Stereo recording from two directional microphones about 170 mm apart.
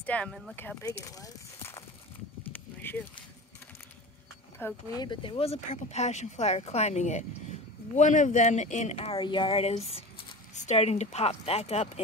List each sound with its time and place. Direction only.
0.0 s speech: 5° left (ahead or behind)
2.5 s a sound: 10° left (ahead or behind)
4.6 s speech: 15° left (ahead or behind)
4.9 s speech: 25° left (ahead or behind)